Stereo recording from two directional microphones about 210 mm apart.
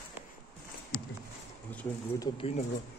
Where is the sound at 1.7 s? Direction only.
10° left (ahead or behind).